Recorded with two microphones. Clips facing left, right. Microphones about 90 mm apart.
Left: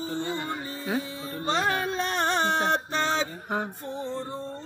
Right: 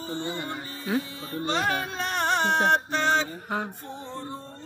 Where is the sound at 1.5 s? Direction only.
35° left (ahead or behind).